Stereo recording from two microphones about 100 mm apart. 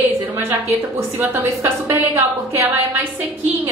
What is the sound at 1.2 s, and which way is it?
A woman's voice, 25° right (ahead or behind).